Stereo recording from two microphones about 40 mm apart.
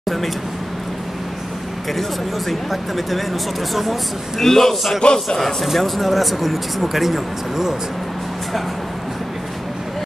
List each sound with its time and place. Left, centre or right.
2.0 s speech: centre
4.5 s a man's voice: centre
5.4 s speech: centre